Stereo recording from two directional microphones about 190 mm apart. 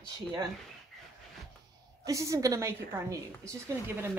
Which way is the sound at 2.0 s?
15° right (ahead or behind).